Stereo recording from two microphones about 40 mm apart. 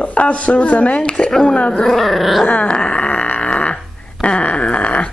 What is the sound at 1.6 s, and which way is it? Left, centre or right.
Speech, left.